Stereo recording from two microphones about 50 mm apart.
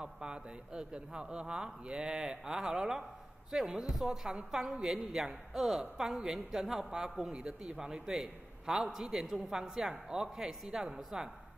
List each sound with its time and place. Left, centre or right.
0.0 s a woman's voice: centre